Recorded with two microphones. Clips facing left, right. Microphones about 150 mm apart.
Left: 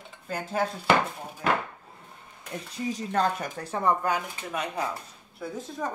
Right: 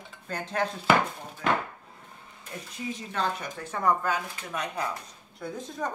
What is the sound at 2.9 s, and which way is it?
Speech, 45° left (ahead or behind).